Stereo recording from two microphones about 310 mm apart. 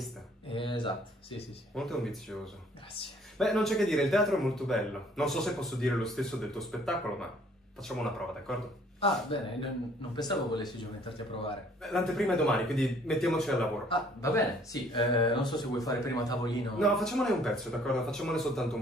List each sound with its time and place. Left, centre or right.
0.5 s a sound: centre
1.8 s speech: centre
9.0 s speech: centre
11.8 s speech: centre
16.7 s speech: centre